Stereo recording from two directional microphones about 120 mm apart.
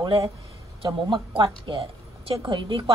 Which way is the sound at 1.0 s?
45° right (ahead or behind).